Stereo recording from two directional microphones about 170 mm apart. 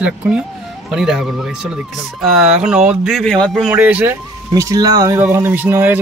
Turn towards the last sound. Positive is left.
turn(degrees=-10)  # may be behind; listen again after turning